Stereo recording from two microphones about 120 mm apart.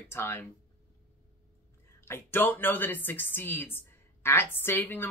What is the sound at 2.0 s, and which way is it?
A woman's voice, 20° left (ahead or behind).